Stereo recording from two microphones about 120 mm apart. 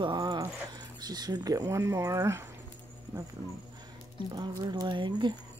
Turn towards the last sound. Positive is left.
turn(degrees=-40)  # may be behind; listen again after turning